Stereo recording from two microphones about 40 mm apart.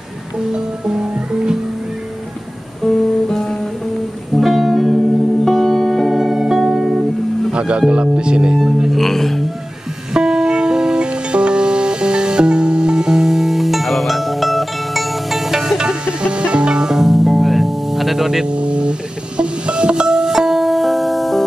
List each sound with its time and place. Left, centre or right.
0.5 s music: right
2.8 s guitar: centre
3.3 s music: centre
4.4 s music: centre
5.6 s music: centre
6.0 s music: centre
7.5 s music: right
7.9 s speech: right
8.5 s singing bowl: centre
8.9 s music: centre
10.1 s music: centre
15.8 s music: right
16.9 s music: centre
18.5 s music: right; by 21.5 s centre